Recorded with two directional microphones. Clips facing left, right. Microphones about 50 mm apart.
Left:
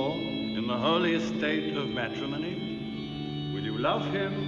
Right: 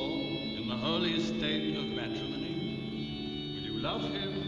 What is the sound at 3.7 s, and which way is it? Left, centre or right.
Speech, left.